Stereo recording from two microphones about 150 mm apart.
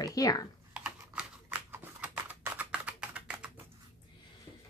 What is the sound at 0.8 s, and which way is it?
Typing, 5° right (ahead or behind).